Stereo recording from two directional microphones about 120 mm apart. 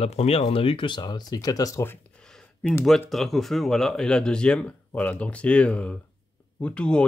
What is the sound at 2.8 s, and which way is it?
Speech, centre (ahead or behind).